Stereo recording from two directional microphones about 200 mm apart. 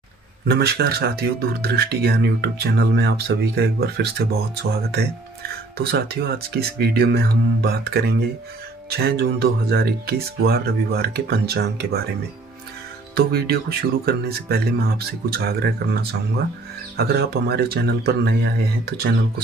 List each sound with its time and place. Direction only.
0.5 s speech: 50° right (ahead or behind)
5.9 s speech: 55° right (ahead or behind)
13.1 s speech: 50° right (ahead or behind)